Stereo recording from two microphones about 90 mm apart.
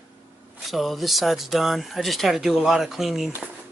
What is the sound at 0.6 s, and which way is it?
Speech, centre (ahead or behind).